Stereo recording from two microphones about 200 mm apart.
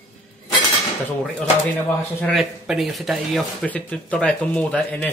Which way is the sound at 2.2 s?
Centre (ahead or behind).